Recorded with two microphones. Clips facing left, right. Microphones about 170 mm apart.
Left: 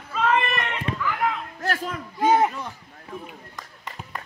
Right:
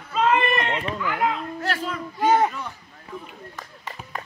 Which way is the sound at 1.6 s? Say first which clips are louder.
Even; 45° left (ahead or behind).